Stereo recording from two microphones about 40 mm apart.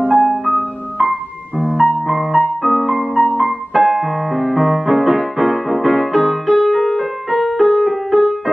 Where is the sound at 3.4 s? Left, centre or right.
Centre.